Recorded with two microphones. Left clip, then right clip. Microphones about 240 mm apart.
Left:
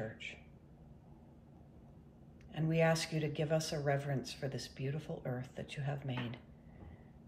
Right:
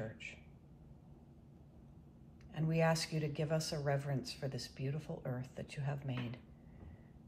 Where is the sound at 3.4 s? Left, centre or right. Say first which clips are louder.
Left 3 dB; centre.